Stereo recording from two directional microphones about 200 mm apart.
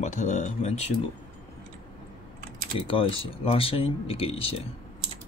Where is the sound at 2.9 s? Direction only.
25° left (ahead or behind).